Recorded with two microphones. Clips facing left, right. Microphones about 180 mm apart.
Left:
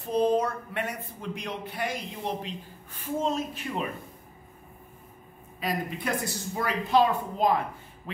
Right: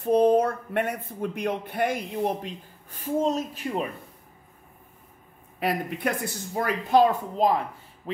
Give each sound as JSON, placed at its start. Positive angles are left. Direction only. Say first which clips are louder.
{"t": 0.0, "sound": "a man's voice", "louder": "right 5 dB", "side_deg": -55}
{"t": 5.6, "sound": "a man's voice", "louder": "right 4 dB", "side_deg": -60}